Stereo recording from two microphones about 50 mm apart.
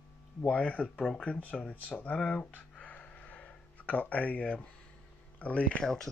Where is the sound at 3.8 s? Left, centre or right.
Left.